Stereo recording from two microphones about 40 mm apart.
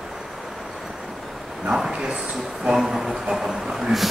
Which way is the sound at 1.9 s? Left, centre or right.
Centre.